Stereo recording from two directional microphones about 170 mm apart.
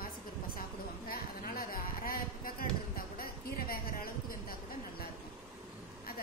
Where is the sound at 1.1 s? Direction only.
60° left (ahead or behind).